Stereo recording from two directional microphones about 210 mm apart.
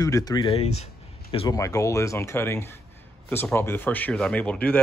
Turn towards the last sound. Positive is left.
turn(degrees=5)  # may be behind; listen again after turning